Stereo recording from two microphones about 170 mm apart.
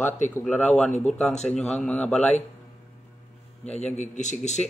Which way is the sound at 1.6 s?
5° left (ahead or behind).